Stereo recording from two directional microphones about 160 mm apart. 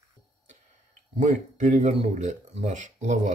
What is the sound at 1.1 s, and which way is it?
Speech, 50° right (ahead or behind).